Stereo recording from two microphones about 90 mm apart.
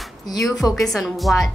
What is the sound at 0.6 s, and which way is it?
Speech, centre (ahead or behind).